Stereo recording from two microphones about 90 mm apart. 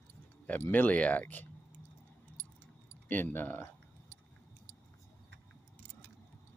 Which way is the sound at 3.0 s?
20° left (ahead or behind).